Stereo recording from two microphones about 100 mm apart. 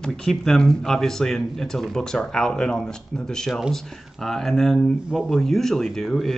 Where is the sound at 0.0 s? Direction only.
5° left (ahead or behind).